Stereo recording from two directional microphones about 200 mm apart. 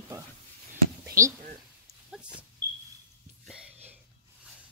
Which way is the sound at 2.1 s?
5° right (ahead or behind).